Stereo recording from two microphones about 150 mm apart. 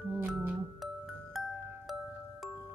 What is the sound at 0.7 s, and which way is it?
Music, centre (ahead or behind).